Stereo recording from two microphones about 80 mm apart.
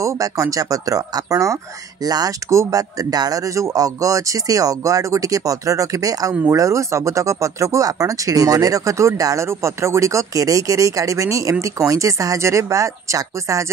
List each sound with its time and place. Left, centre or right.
0.0 s speech: right
2.0 s speech: right